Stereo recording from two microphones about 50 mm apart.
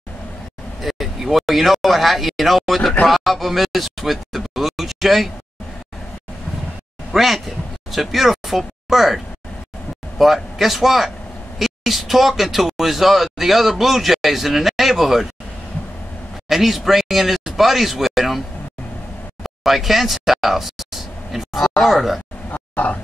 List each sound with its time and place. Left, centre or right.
0.8 s speech: centre
7.1 s a man's voice: centre
16.4 s speech: centre
19.4 s speech: centre
22.5 s roaring cats: left